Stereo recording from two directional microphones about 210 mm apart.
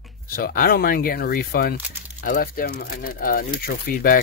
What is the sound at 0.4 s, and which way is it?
Speech, 45° left (ahead or behind).